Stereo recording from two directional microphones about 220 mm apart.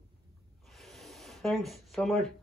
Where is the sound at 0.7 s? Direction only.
Centre (ahead or behind).